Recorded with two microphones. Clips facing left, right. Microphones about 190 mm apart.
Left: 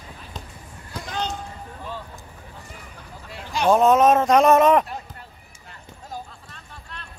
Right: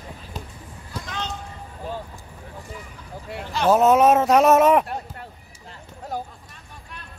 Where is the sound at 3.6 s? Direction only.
5° right (ahead or behind).